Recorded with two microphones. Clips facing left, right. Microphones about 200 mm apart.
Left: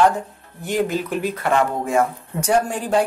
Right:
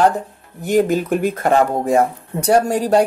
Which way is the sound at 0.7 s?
45° right (ahead or behind).